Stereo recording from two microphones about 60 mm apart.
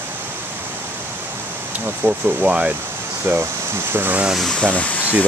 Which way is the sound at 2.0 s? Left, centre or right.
Centre.